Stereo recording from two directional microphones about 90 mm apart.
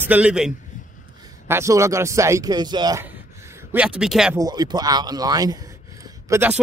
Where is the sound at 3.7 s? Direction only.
10° right (ahead or behind).